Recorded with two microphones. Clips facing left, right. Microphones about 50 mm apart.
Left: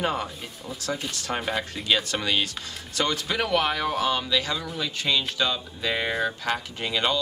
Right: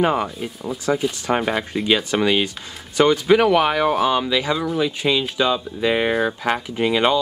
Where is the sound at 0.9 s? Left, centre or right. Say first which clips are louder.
Right 9 dB; right.